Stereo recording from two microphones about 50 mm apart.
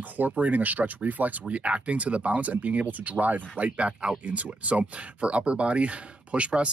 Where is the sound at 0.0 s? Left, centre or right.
Right.